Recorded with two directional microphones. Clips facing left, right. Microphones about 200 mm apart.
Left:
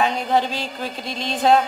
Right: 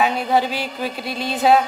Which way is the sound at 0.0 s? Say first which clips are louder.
Right 1 dB; 5° right (ahead or behind).